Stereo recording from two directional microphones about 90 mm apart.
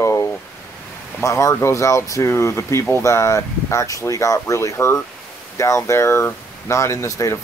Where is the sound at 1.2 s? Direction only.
35° left (ahead or behind).